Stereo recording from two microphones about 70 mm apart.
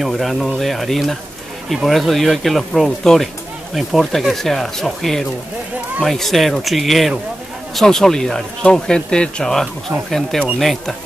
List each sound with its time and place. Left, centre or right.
0.0 s speech: centre